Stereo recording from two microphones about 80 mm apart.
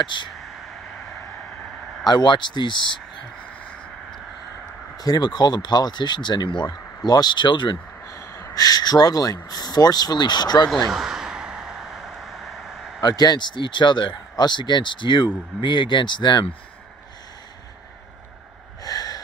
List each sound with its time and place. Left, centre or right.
0.0 s speech: left
0.4 s a sound: centre
2.0 s speech: left
4.9 s speech: left
7.7 s a sound: left
8.5 s speech: left
10.7 s a sound: centre
13.0 s speech: left
14.3 s speech: left
18.9 s wheeze: left